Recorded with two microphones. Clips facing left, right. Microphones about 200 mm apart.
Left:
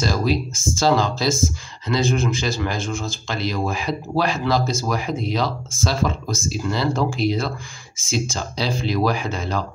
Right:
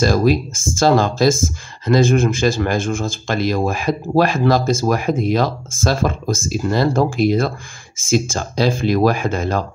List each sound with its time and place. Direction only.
0.0 s speech: 50° right (ahead or behind)